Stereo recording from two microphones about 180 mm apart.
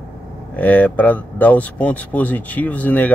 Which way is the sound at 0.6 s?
10° left (ahead or behind).